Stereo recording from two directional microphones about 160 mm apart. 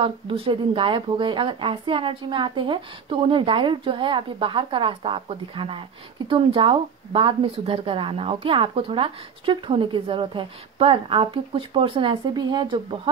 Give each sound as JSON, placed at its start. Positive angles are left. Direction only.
{"t": 0.0, "sound": "speech", "side_deg": -35}